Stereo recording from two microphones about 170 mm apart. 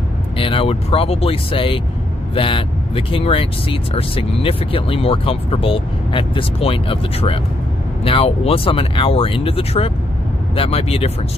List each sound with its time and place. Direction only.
0.4 s speech: 30° left (ahead or behind)